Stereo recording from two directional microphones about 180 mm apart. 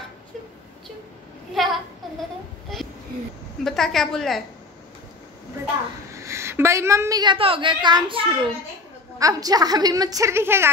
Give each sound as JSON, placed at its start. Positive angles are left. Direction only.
{"t": 1.5, "sound": "a sound", "side_deg": 0}
{"t": 3.6, "sound": "a woman's voice", "side_deg": 0}
{"t": 6.1, "sound": "a woman's voice", "side_deg": -15}